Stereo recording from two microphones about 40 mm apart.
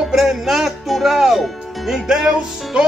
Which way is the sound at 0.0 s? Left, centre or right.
Centre.